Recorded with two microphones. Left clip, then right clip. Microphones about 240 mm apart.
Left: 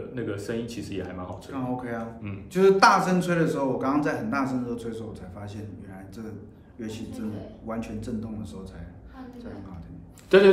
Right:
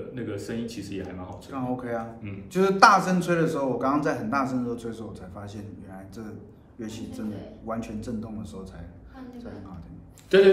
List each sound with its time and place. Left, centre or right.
0.1 s speech: centre
1.3 s a man's voice: centre
6.8 s a man's voice: centre
10.3 s speech: centre